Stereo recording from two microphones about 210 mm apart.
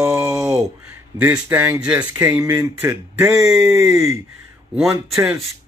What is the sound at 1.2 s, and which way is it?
Speech, 10° right (ahead or behind).